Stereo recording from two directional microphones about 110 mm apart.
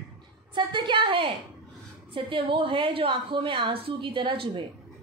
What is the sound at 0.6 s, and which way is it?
A woman's voice, 45° right (ahead or behind).